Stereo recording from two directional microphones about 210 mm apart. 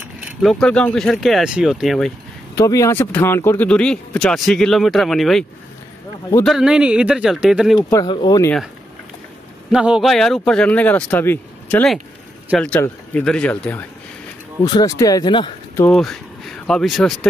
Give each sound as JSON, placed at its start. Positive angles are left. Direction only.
{"t": 0.4, "sound": "speech", "side_deg": 0}
{"t": 2.5, "sound": "speech", "side_deg": 15}
{"t": 6.4, "sound": "speech", "side_deg": 0}
{"t": 7.9, "sound": "speech", "side_deg": 20}
{"t": 9.7, "sound": "speech", "side_deg": -5}
{"t": 15.8, "sound": "speech", "side_deg": 5}